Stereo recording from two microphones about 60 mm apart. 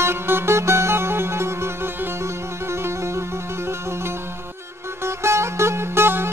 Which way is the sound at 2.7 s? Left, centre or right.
Right.